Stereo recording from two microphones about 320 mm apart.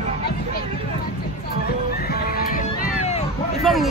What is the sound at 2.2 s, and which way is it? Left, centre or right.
Music, left.